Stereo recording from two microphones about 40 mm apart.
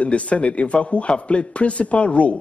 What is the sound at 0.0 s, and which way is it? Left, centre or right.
A man's voice, left.